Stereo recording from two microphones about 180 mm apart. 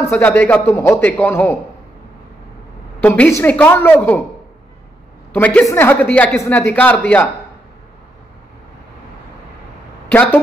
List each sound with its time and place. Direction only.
0.1 s a man's voice: 10° left (ahead or behind)
3.0 s a man's voice: 10° left (ahead or behind)
5.3 s a man's voice: 10° left (ahead or behind)
10.0 s a woman's voice: 10° left (ahead or behind)